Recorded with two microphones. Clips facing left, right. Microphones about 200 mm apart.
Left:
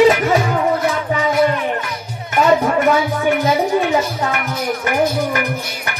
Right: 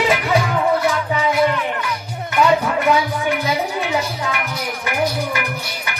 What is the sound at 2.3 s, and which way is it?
Music, 45° left (ahead or behind).